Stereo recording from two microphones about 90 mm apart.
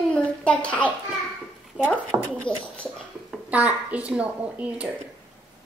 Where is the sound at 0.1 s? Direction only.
15° left (ahead or behind).